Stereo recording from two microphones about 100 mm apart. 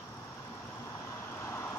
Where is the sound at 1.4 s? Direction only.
20° left (ahead or behind).